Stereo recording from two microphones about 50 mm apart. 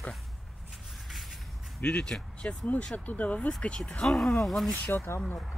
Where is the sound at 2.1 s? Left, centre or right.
Left.